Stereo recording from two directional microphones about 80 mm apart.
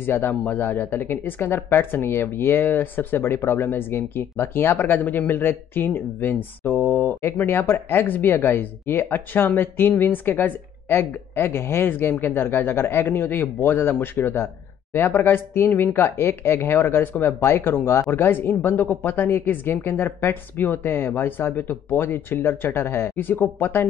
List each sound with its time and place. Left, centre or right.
0.0 s speech: left